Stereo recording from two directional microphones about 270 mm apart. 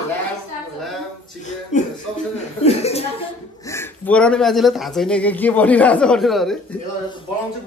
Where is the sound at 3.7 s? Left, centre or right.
Centre.